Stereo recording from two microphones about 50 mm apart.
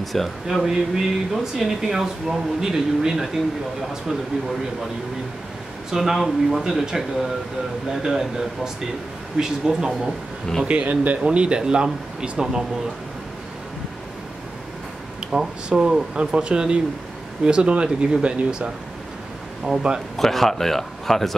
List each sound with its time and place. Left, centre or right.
0.0 s speech: centre
0.7 s speech: centre
5.9 s speech: centre
10.6 s speech: right
15.3 s speech: centre
19.7 s speech: centre
20.2 s speech: centre